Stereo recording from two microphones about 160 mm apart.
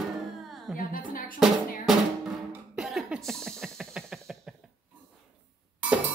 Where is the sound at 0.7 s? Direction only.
60° left (ahead or behind).